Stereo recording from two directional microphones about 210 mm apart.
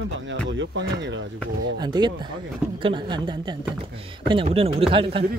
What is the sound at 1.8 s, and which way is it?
A woman's voice, 20° right (ahead or behind).